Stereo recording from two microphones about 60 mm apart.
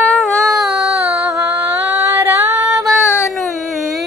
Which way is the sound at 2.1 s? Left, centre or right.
Right.